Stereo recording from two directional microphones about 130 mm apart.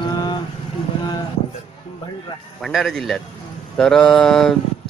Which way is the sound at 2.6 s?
Centre (ahead or behind).